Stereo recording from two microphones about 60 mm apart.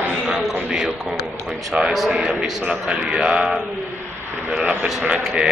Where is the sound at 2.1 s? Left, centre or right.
Centre.